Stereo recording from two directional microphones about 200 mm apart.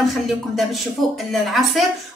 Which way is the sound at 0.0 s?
Centre (ahead or behind).